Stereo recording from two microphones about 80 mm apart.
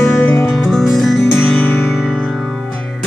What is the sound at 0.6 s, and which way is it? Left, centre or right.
Music, centre.